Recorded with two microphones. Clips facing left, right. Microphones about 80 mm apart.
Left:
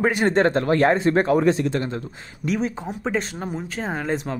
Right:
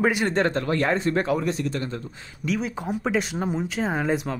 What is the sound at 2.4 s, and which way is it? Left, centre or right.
Speech, left.